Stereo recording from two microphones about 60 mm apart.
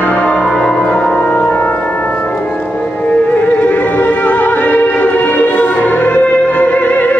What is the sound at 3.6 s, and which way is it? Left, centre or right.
Music, left.